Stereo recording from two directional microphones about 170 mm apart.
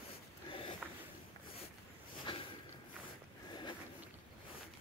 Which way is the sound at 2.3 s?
30° left (ahead or behind).